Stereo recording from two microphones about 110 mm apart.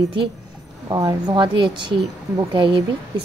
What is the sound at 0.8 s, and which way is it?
A woman's voice, 35° right (ahead or behind).